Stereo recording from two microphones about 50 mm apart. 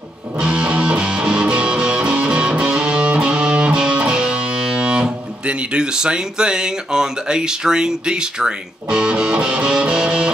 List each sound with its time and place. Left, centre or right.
0.4 s music: right